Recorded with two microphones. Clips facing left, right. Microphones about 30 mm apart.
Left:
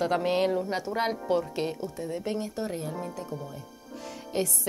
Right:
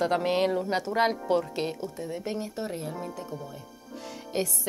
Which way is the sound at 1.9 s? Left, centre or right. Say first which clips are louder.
Left 1 dB; centre.